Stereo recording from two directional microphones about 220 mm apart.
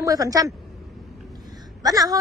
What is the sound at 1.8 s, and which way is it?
Speech, 15° right (ahead or behind).